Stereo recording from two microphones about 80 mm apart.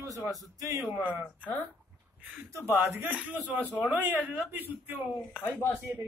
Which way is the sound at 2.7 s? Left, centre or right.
Right.